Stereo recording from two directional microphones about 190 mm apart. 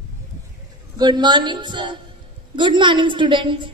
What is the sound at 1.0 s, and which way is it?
A woman's voice, 25° right (ahead or behind).